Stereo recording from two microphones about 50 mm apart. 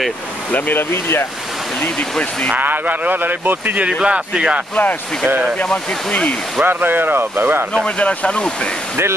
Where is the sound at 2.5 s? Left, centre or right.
Right.